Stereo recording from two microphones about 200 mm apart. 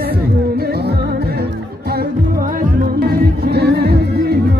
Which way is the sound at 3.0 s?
55° right (ahead or behind).